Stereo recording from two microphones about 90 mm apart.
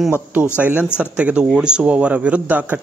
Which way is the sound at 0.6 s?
15° right (ahead or behind).